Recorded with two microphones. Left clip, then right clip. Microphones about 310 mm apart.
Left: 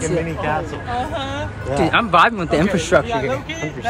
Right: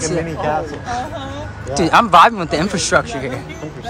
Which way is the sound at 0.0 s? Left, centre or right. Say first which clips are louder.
Right 1 dB; right.